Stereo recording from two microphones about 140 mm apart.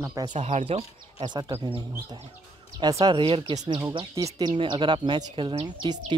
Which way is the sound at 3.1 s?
35° right (ahead or behind).